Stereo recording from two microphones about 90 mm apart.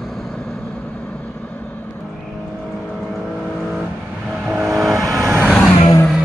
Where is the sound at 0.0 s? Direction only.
5° left (ahead or behind).